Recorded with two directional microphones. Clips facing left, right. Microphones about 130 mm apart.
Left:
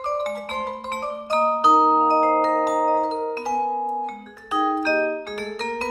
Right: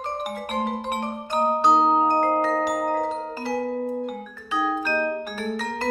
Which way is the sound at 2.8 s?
20° left (ahead or behind).